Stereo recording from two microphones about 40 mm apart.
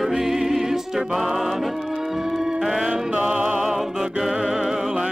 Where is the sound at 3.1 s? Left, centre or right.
Right.